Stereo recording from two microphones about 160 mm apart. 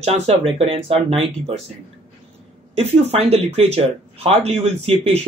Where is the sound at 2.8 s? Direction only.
40° right (ahead or behind).